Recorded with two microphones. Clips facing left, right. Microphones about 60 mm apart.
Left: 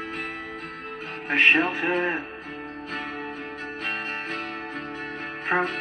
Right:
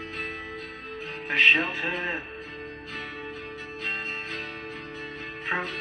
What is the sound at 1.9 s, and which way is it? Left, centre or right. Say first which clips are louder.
Speech: left 6 dB; centre.